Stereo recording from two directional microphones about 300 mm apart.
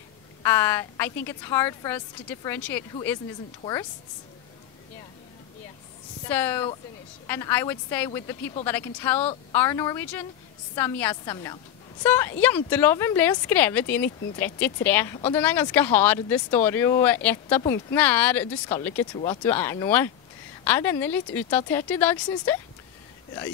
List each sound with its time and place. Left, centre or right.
0.4 s a woman's voice: centre
6.2 s a woman's voice: centre